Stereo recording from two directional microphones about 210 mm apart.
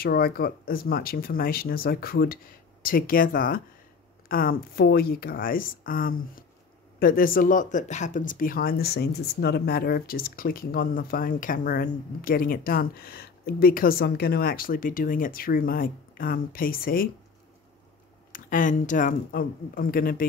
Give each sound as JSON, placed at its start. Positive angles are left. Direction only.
{"t": 0.0, "sound": "speech", "side_deg": 45}
{"t": 18.3, "sound": "speech", "side_deg": 40}